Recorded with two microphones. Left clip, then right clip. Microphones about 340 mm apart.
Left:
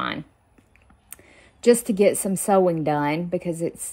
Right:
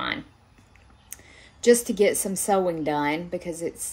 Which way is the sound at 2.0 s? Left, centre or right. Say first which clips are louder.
Left 2 dB; centre.